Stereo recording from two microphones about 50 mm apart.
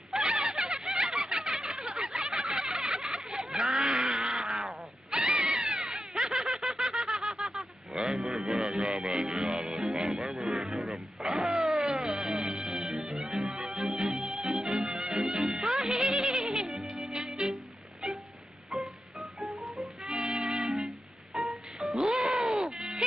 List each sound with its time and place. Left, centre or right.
0.3 s a sound: centre
0.8 s snicker: centre
3.8 s wild animals: centre
5.1 s wail: centre
6.2 s snicker: centre
8.7 s music: centre
11.3 s a sound: centre
11.7 s music: centre
13.5 s music: centre
18.0 s a sound: centre
19.4 s music: centre
20.2 s music: centre
20.7 s music: centre